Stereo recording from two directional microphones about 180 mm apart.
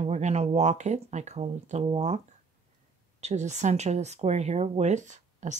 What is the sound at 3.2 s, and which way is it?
Speech, 40° right (ahead or behind).